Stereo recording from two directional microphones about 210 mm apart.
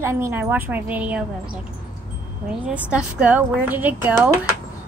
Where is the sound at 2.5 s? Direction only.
5° right (ahead or behind).